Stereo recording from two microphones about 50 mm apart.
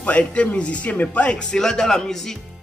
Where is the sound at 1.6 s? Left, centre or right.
Centre.